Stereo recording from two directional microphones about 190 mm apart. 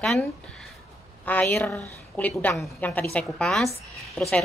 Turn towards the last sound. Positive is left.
turn(degrees=5)  # may be behind; listen again after turning